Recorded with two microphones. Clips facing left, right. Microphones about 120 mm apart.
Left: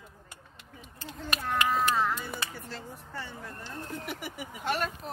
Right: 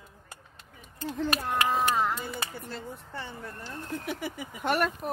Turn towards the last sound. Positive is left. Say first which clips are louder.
# right 4 dB
turn(degrees=-60)  # may be behind; listen again after turning